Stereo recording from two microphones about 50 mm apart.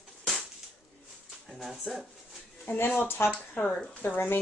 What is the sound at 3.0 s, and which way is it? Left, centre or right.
Speech, left.